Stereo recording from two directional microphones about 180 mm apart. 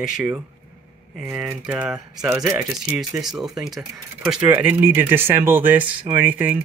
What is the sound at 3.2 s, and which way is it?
Speech, centre (ahead or behind).